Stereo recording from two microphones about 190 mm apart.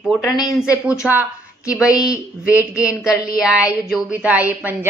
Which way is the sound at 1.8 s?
20° left (ahead or behind).